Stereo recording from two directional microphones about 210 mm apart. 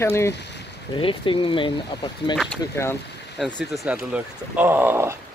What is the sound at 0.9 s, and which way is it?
Speech, 25° left (ahead or behind).